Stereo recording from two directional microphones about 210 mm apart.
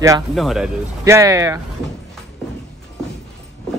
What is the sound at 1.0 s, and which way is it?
Speech, 15° right (ahead or behind).